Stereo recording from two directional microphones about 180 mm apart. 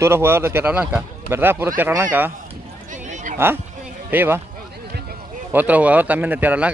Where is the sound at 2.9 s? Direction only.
45° right (ahead or behind).